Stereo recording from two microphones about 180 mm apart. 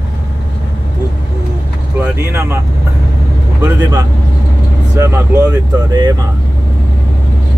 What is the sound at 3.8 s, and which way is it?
Speech, 20° right (ahead or behind).